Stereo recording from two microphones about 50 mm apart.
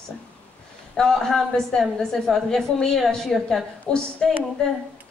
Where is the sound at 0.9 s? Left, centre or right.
Centre.